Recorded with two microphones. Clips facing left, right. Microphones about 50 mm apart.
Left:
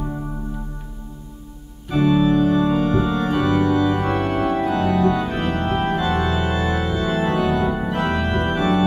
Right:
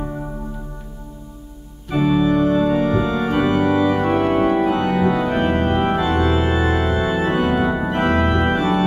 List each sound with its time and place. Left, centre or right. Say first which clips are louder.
1.9 s organ: even; centre